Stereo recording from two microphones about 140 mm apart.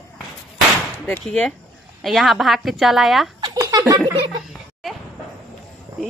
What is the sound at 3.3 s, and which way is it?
Giggle, 30° right (ahead or behind).